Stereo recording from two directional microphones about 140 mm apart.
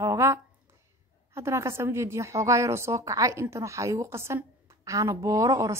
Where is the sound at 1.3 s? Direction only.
20° right (ahead or behind).